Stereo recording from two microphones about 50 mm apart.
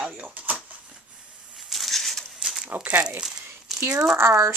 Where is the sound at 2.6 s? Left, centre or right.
Right.